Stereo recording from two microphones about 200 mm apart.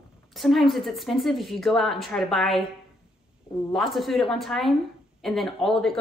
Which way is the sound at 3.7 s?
Centre (ahead or behind).